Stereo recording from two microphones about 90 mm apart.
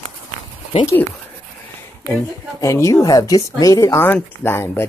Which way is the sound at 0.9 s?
25° left (ahead or behind).